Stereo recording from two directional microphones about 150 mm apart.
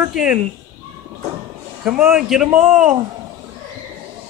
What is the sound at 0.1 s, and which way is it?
Speech, 5° right (ahead or behind).